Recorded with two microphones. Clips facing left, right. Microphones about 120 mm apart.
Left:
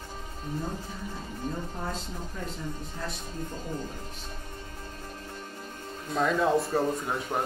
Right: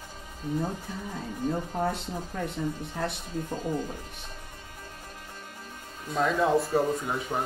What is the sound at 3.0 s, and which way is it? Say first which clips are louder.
Speech: right 6 dB; 70° right (ahead or behind).